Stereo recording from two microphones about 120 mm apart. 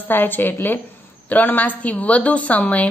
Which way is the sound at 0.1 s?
15° left (ahead or behind).